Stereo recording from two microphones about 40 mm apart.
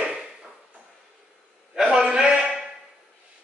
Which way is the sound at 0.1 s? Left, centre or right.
Right.